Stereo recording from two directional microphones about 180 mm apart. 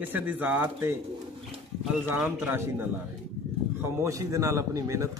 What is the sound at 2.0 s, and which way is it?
Speech, 10° right (ahead or behind).